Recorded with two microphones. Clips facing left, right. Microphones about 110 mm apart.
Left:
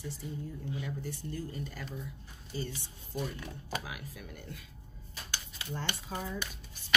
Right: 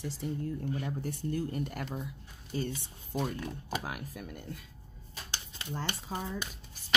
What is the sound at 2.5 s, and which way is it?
Speech, 55° right (ahead or behind).